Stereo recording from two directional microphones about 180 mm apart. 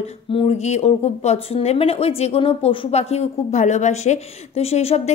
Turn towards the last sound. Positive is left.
turn(degrees=35)  # may be behind; listen again after turning